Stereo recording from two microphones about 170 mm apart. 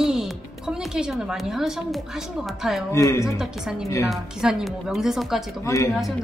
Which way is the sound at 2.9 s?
15° left (ahead or behind).